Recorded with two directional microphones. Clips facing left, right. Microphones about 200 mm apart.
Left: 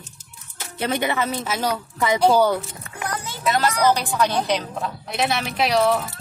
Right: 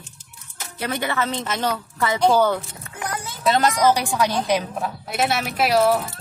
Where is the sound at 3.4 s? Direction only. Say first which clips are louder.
Right 2 dB; 25° right (ahead or behind).